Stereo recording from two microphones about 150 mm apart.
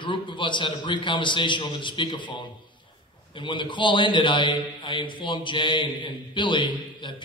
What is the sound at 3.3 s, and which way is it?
A man's voice, 30° left (ahead or behind).